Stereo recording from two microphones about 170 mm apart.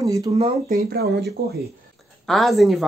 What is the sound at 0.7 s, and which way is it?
Speech, 65° right (ahead or behind).